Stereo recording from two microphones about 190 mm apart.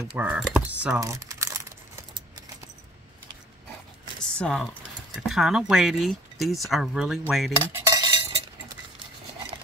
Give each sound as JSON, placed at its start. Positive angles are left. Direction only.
{"t": 0.1, "sound": "speech", "side_deg": -5}
{"t": 0.9, "sound": "crumpling", "side_deg": -15}
{"t": 4.2, "sound": "a sound", "side_deg": 5}
{"t": 5.1, "sound": "speech", "side_deg": 0}
{"t": 7.7, "sound": "cutlery", "side_deg": -20}